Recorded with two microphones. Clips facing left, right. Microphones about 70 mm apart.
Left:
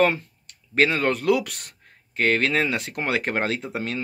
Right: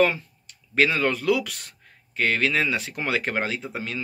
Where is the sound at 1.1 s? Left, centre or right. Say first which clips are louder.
Left 2 dB; left.